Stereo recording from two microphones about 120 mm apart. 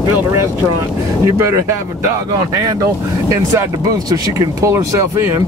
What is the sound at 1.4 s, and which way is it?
Speech, 25° right (ahead or behind).